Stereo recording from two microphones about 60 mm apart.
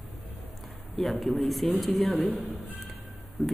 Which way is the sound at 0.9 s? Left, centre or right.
Centre.